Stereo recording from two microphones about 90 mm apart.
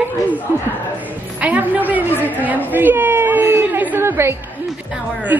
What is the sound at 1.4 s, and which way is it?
Speech, 20° right (ahead or behind).